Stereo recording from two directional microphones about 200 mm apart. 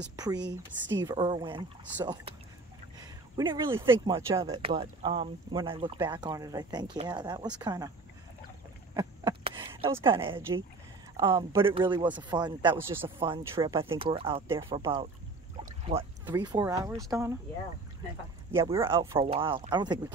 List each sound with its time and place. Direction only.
0.1 s speech: 20° right (ahead or behind)
0.4 s speech: 65° right (ahead or behind)
1.0 s speech: 20° right (ahead or behind)
3.3 s speech: 20° right (ahead or behind)
8.9 s a sound: 25° right (ahead or behind)
10.0 s speech: 25° right (ahead or behind)
12.7 s speech: 10° right (ahead or behind); by 14.4 s 25° right (ahead or behind)
14.5 s speech: 15° right (ahead or behind)
15.8 s speech: 30° right (ahead or behind)
16.3 s speech: 15° right (ahead or behind)
18.5 s speech: 15° right (ahead or behind)